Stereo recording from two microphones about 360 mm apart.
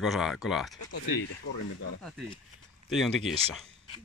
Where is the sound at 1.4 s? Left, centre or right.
Left.